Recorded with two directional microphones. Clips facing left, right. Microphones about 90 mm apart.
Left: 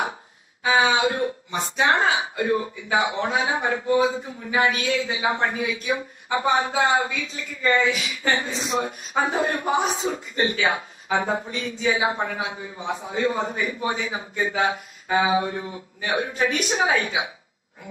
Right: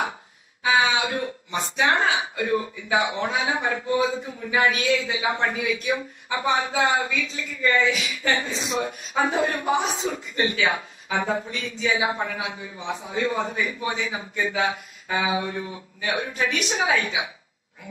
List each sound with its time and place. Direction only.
0.7 s speech: 35° left (ahead or behind)